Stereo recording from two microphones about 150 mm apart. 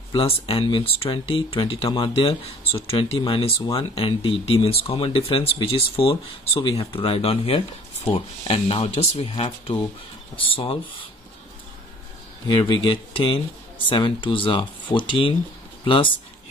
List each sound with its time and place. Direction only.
0.1 s speech: 35° left (ahead or behind)
12.4 s speech: 30° left (ahead or behind)